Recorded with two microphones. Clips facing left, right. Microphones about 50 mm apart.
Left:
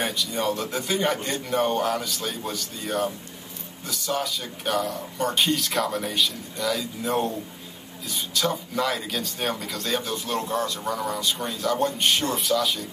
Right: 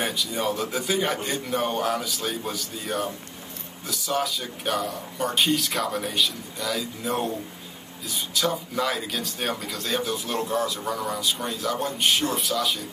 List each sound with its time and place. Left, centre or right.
0.0 s speech: centre